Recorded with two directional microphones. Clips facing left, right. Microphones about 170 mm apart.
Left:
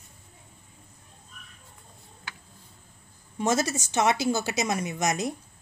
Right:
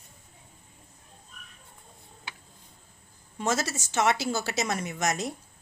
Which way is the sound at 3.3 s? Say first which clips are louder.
Left 3 dB; 15° left (ahead or behind).